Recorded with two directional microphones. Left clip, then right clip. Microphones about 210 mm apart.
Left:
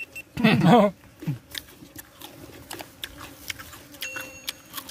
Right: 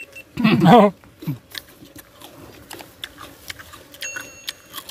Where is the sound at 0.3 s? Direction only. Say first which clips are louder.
Right 2 dB; 45° left (ahead or behind).